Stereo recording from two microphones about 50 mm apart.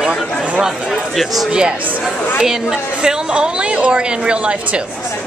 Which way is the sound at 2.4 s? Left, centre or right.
Centre.